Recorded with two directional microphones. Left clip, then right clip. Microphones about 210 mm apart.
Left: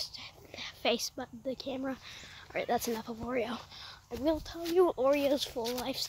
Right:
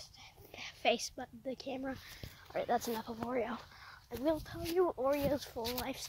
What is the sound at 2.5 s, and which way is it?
Speech, 5° left (ahead or behind).